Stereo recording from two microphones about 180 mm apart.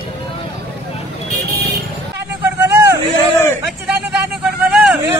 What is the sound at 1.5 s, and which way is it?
Vehicle, 60° right (ahead or behind).